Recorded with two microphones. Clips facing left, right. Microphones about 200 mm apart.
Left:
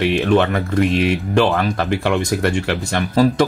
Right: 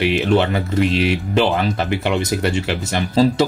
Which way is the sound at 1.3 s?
15° right (ahead or behind).